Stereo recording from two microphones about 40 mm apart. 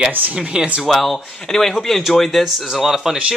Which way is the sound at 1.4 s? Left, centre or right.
Centre.